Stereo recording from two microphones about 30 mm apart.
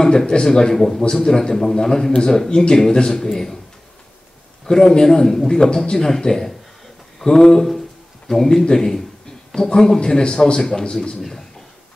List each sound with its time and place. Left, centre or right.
0.0 s speech: left
4.6 s speech: left
5.9 s speech: centre
11.1 s speech: centre